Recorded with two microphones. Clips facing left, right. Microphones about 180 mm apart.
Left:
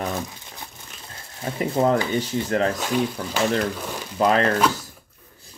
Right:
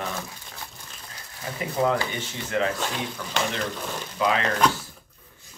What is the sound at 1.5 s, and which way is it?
Speech, 40° left (ahead or behind).